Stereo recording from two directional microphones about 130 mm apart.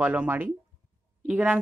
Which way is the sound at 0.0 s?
10° right (ahead or behind).